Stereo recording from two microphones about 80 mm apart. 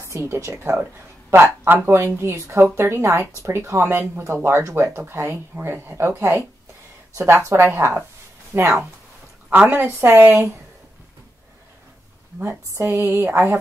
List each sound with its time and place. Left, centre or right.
0.0 s a woman's voice: right
12.4 s speech: right